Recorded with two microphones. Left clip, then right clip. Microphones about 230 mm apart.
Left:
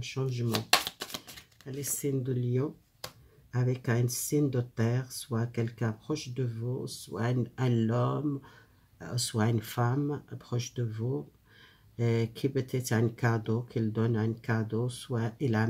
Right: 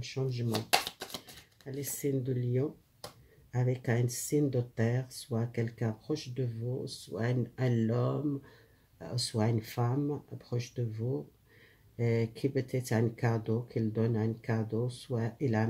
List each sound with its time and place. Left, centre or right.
0.0 s speech: centre